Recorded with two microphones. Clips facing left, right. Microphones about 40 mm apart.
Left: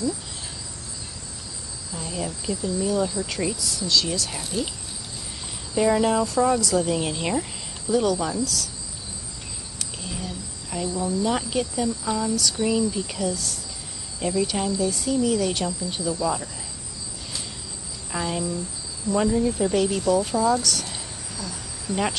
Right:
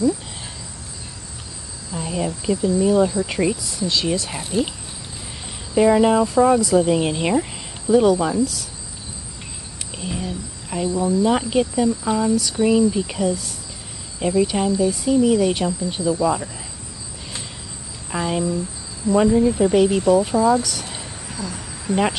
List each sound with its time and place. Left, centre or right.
2.0 s speech: right
5.8 s speech: centre
9.9 s a sound: right
11.0 s speech: centre
18.1 s speech: centre